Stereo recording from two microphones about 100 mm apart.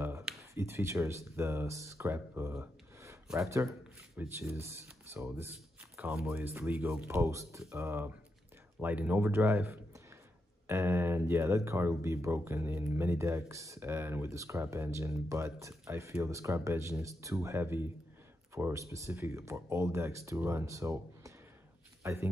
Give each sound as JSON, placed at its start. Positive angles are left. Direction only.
{"t": 0.4, "sound": "a man's voice", "side_deg": -30}